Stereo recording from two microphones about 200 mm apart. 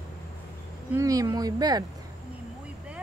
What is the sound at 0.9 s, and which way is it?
Speech, 15° right (ahead or behind).